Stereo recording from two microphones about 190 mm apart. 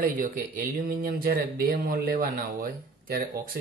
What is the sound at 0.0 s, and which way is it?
Speech, 45° right (ahead or behind).